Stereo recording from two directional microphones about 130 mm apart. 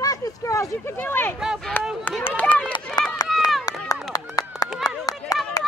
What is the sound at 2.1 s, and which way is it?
Run, 10° left (ahead or behind).